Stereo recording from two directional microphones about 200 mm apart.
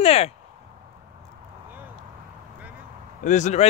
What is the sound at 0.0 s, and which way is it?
Speech, 30° left (ahead or behind).